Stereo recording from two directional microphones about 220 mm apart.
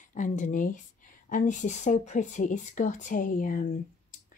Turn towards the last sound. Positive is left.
turn(degrees=35)  # may be behind; listen again after turning